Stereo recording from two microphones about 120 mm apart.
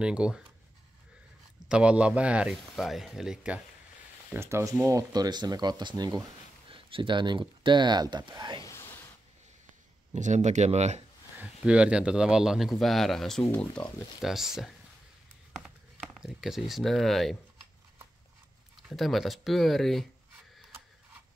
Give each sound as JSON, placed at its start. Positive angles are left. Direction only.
{"t": 0.0, "sound": "speech", "side_deg": -10}
{"t": 1.7, "sound": "speech", "side_deg": -10}
{"t": 4.3, "sound": "speech", "side_deg": -20}
{"t": 6.7, "sound": "speech", "side_deg": -45}
{"t": 8.6, "sound": "a sound", "side_deg": 20}
{"t": 10.1, "sound": "speech", "side_deg": -80}
{"t": 11.3, "sound": "speech", "side_deg": -10}
{"t": 14.2, "sound": "speech", "side_deg": -5}
{"t": 18.9, "sound": "speech", "side_deg": 0}